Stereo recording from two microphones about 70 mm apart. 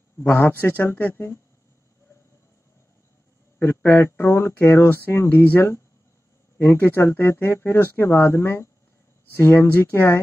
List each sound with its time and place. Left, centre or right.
0.2 s speech: left
3.5 s speech: left